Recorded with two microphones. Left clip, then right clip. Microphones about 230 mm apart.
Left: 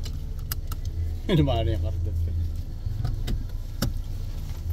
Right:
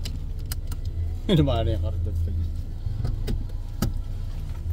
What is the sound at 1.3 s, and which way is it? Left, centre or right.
Speech, centre.